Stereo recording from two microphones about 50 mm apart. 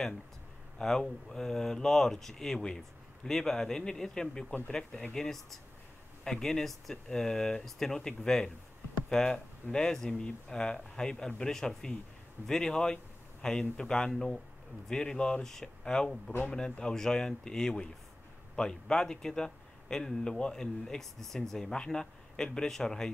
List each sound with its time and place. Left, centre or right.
0.7 s speech: centre
14.1 s speech: centre